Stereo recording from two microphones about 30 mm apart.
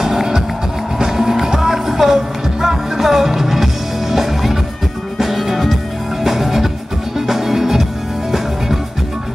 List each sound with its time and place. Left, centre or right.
0.0 s music: centre